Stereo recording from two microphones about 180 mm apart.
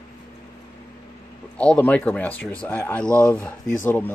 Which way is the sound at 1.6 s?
5° left (ahead or behind).